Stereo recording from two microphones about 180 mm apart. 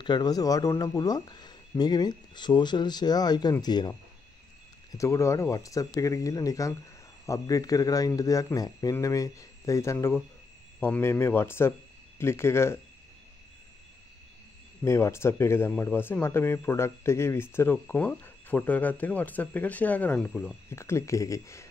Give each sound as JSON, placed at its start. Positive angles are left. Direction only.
{"t": 0.0, "sound": "speech", "side_deg": 25}
{"t": 4.9, "sound": "speech", "side_deg": 15}
{"t": 14.8, "sound": "speech", "side_deg": 15}
{"t": 20.7, "sound": "speech", "side_deg": 15}